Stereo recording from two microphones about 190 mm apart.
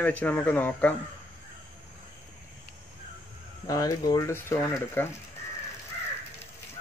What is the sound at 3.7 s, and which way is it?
Speech, 20° left (ahead or behind).